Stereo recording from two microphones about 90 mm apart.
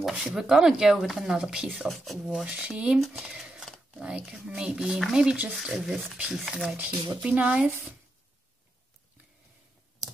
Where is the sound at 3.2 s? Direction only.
5° right (ahead or behind).